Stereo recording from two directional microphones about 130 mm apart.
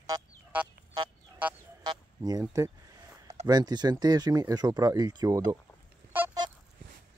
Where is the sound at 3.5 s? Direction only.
35° right (ahead or behind).